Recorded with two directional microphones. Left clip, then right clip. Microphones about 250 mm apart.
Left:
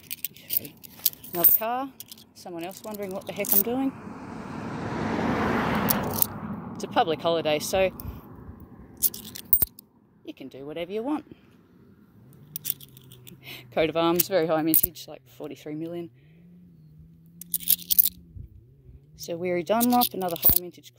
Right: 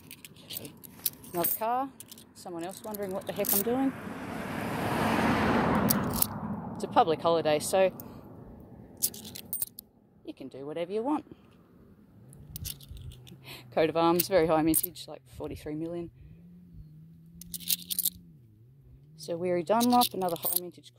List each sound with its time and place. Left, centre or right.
0.4 s keys jangling: left
1.6 s speech: centre
3.8 s vehicle: right
5.8 s a sound: left
6.3 s a sound: left
6.7 s speech: centre
7.9 s a sound: left
8.9 s scissors: centre
10.2 s speech: centre
12.6 s a sound: centre
13.5 s speech: centre
17.4 s scissors: centre
19.1 s speech: centre
20.2 s speech: left